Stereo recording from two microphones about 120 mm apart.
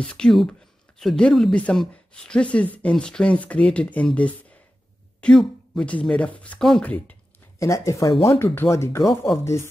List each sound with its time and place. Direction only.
0.0 s speech: 10° left (ahead or behind)
7.5 s speech: 25° left (ahead or behind)